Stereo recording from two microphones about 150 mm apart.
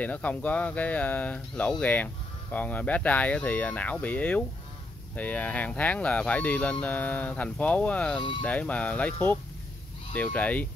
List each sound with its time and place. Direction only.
0.0 s speech: 10° left (ahead or behind)